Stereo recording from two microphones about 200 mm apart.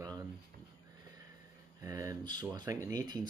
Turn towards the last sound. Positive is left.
turn(degrees=-20)  # may be behind; listen again after turning